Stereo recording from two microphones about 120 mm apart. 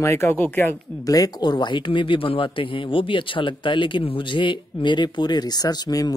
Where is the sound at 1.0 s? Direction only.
30° left (ahead or behind).